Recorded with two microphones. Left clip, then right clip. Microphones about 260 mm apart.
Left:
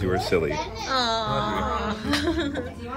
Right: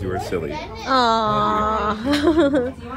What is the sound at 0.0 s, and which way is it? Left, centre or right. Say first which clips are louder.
Speech: left 1 dB; left.